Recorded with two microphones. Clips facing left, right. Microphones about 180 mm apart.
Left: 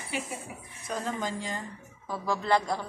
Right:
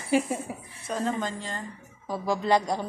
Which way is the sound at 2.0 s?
15° right (ahead or behind).